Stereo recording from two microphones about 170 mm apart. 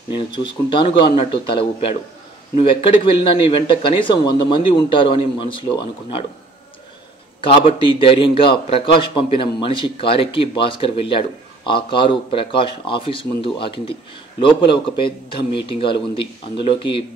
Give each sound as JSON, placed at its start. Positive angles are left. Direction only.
{"t": 0.1, "sound": "a man's voice", "side_deg": 30}
{"t": 7.4, "sound": "a man's voice", "side_deg": 30}